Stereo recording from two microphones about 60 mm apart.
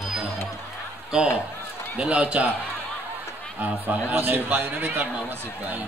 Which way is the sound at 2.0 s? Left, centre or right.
Centre.